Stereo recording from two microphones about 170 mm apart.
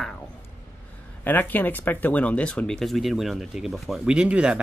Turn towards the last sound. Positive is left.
turn(degrees=-5)  # may be behind; listen again after turning